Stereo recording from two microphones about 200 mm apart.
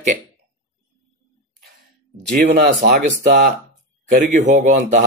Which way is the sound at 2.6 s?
55° right (ahead or behind).